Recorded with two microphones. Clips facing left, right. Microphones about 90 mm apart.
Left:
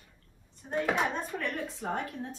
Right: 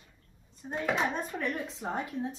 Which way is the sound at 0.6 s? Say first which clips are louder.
Left 3 dB; 5° right (ahead or behind).